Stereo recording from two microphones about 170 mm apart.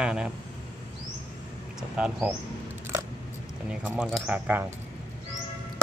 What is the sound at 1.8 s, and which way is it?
Speech, 5° right (ahead or behind).